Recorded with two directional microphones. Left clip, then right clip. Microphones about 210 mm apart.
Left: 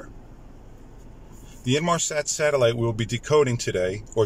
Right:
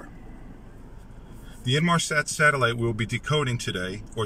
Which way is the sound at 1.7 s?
15° left (ahead or behind).